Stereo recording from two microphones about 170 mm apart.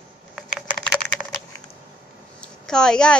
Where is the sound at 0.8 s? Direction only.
5° left (ahead or behind).